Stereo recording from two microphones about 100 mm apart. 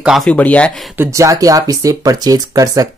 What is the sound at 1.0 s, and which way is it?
Speech, 30° right (ahead or behind).